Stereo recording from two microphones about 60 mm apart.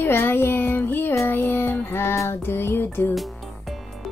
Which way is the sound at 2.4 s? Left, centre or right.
Left.